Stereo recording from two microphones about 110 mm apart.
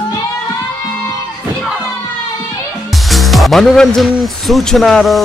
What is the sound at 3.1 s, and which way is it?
Speech, centre (ahead or behind).